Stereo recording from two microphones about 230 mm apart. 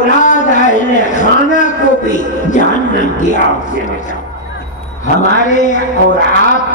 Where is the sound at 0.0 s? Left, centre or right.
Left.